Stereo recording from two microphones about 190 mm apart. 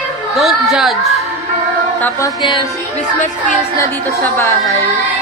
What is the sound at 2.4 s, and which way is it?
Music, 25° left (ahead or behind).